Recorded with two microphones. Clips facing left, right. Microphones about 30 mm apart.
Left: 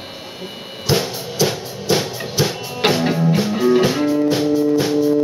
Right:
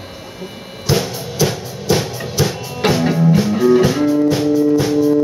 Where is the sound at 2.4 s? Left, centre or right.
Centre.